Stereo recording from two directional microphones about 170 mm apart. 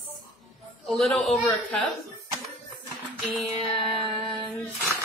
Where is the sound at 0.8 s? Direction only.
Centre (ahead or behind).